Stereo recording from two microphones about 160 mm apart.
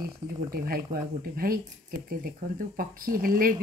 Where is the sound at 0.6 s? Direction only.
70° right (ahead or behind).